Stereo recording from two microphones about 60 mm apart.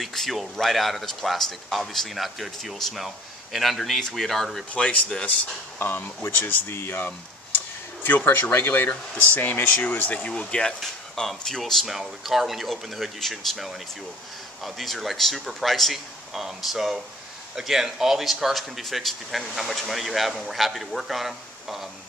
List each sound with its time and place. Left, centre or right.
0.0 s speech: centre
5.1 s speech: left
5.8 s speech: left; by 21.8 s centre